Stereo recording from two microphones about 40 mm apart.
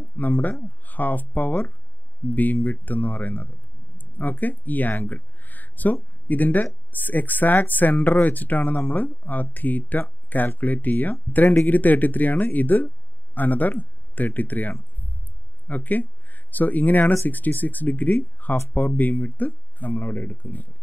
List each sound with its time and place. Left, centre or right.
0.0 s speech: left